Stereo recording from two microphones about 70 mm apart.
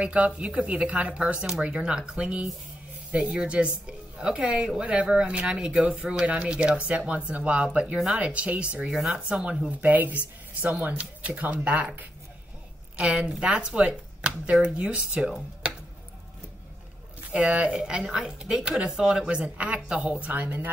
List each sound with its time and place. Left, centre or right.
0.0 s a woman's voice: centre
17.3 s a woman's voice: centre